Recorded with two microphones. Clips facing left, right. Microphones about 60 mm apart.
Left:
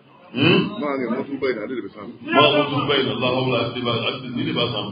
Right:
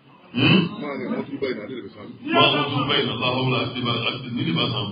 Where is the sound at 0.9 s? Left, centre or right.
Left.